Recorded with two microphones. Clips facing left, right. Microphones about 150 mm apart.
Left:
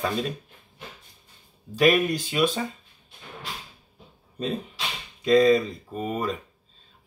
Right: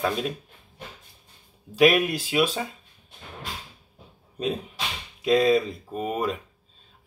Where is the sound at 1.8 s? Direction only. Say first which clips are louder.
Right 1 dB; 5° right (ahead or behind).